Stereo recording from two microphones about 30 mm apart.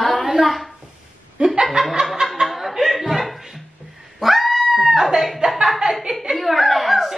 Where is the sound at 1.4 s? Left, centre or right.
Centre.